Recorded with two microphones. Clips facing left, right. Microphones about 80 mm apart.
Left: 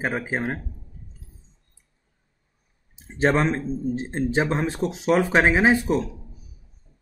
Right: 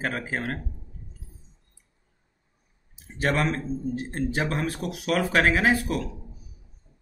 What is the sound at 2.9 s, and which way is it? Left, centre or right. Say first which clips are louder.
Speech: left 5 dB; left.